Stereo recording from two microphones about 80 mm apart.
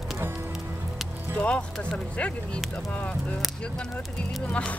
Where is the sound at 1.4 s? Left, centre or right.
Centre.